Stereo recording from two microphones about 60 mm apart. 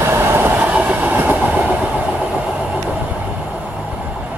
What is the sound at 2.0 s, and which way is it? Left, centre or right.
Vehicle, right.